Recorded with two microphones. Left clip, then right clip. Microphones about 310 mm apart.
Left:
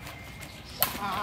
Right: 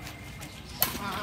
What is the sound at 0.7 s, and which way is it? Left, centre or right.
Chop, centre.